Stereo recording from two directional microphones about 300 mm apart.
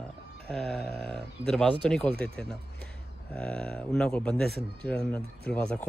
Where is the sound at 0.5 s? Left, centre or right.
Centre.